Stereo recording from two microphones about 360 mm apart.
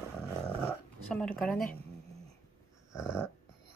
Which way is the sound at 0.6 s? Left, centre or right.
Centre.